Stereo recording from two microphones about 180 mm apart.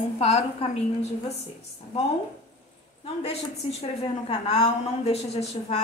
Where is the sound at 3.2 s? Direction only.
35° left (ahead or behind).